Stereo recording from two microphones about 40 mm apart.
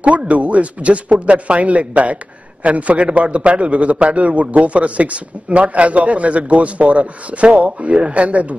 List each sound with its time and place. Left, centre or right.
0.0 s a man's voice: right